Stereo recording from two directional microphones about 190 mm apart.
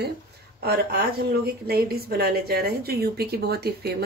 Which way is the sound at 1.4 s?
55° right (ahead or behind).